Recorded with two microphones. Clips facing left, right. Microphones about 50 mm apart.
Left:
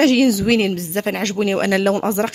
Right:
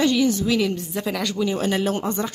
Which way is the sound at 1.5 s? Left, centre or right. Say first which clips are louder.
Left 6 dB; left.